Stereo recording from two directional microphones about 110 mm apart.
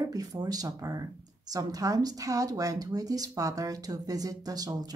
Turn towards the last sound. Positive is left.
turn(degrees=-35)  # may be behind; listen again after turning